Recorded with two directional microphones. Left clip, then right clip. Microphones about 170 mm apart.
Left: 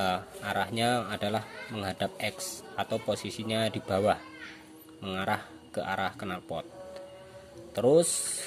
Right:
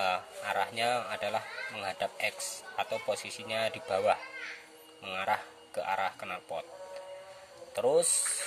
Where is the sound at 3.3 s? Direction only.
65° left (ahead or behind).